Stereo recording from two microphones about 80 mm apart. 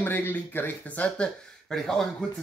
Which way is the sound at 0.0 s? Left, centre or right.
Left.